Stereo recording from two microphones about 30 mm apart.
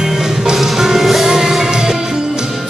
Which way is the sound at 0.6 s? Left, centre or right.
Centre.